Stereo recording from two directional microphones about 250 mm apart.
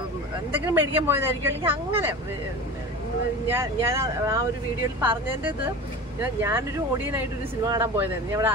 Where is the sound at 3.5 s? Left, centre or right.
Centre.